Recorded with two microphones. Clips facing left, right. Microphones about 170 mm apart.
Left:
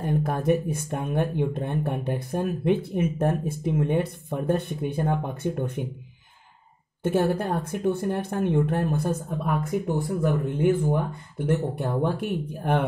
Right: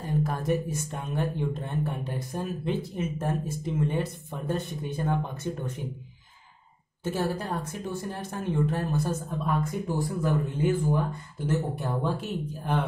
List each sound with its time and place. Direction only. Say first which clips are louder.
0.0 s speech: left 4 dB; 60° left (ahead or behind)
7.0 s speech: left 6 dB; 60° left (ahead or behind)